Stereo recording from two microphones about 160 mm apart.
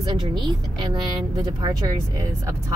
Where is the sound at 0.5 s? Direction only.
25° right (ahead or behind).